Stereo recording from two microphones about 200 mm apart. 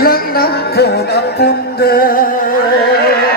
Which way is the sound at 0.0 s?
50° left (ahead or behind).